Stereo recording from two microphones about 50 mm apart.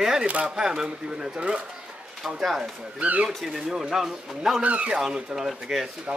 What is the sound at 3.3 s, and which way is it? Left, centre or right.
A man's voice, centre.